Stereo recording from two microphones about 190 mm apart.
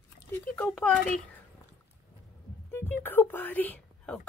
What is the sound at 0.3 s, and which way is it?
Speech, 5° left (ahead or behind).